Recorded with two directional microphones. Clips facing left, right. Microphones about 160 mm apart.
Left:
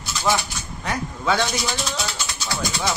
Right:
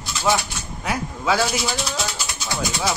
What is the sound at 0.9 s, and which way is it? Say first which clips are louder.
Speech: right 1 dB; 5° right (ahead or behind).